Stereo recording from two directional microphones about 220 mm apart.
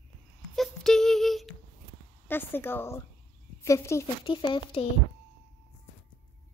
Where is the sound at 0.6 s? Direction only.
Centre (ahead or behind).